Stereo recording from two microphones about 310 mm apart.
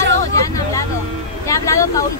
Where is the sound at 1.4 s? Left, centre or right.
Centre.